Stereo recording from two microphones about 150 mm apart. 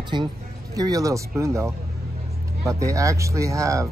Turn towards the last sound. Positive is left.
turn(degrees=-20)  # may be behind; listen again after turning